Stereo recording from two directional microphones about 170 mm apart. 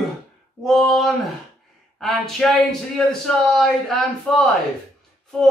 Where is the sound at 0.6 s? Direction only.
Centre (ahead or behind).